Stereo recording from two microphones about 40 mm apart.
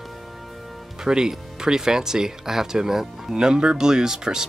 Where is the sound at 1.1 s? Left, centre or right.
Centre.